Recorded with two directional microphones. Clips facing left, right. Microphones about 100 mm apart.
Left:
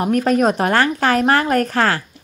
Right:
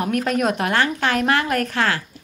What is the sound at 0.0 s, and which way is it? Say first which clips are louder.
A woman's voice: left 5 dB; 35° left (ahead or behind).